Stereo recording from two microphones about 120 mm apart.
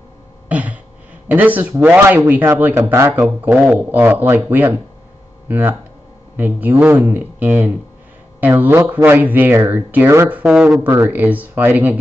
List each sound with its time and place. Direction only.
0.5 s throat clearing: 10° right (ahead or behind)
1.3 s speech: 15° right (ahead or behind)